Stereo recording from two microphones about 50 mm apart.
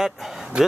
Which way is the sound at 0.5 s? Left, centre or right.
Right.